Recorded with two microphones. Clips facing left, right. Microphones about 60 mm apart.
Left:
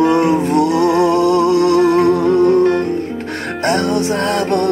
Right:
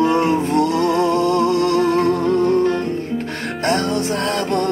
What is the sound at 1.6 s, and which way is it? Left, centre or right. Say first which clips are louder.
Music: left 5 dB; left.